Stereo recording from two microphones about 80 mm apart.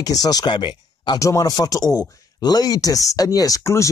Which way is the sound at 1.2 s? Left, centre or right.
Left.